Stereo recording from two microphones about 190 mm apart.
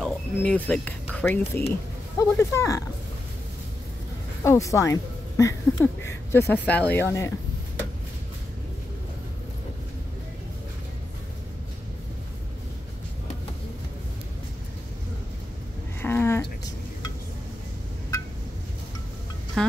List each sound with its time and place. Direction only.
0.0 s speech: 5° left (ahead or behind)
4.4 s speech: 15° left (ahead or behind)
16.0 s a sound: 10° left (ahead or behind)